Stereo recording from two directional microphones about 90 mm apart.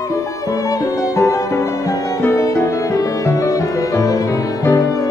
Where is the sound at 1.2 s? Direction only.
35° left (ahead or behind).